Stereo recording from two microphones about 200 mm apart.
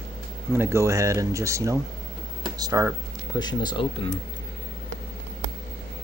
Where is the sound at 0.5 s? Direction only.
10° right (ahead or behind).